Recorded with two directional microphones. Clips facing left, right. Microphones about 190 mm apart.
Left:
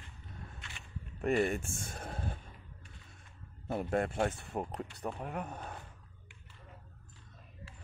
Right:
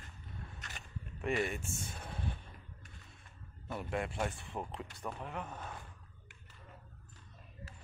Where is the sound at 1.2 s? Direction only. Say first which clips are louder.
Left 5 dB; 40° left (ahead or behind).